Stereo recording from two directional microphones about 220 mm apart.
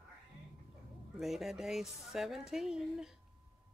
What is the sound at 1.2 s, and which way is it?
Speech, centre (ahead or behind).